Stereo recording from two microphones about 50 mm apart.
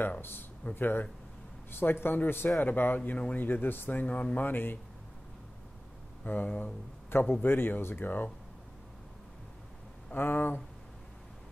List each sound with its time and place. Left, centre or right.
0.2 s speech: left
3.4 s speech: left
4.5 s speech: left
6.2 s speech: left
10.1 s speech: left